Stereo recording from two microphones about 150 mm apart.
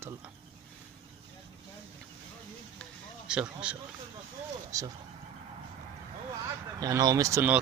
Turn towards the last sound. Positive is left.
turn(degrees=-20)  # may be behind; listen again after turning